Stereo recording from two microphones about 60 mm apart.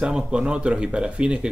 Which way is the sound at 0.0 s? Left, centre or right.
Centre.